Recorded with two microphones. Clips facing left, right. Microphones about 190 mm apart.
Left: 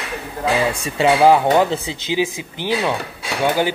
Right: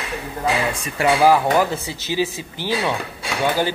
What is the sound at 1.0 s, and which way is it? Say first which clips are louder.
A man's voice: left 2 dB; 25° left (ahead or behind).